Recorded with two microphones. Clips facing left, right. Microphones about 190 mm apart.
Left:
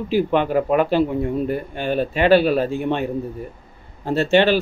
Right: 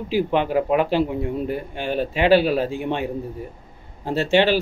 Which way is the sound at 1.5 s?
50° left (ahead or behind).